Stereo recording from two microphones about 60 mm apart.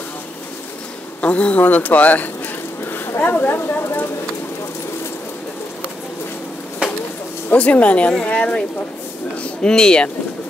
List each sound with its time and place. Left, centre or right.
1.2 s speech: left
6.8 s a sound: centre
7.4 s speech: left